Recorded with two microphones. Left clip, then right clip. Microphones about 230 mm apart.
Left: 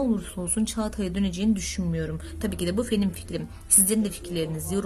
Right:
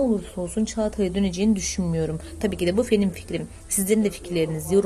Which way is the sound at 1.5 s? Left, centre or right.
Left.